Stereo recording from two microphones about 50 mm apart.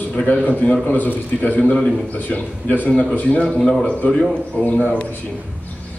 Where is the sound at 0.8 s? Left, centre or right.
Left.